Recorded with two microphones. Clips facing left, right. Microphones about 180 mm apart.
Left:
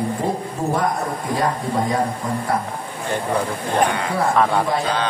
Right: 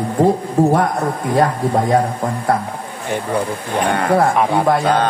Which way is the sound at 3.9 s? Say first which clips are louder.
Right 8 dB; 55° right (ahead or behind).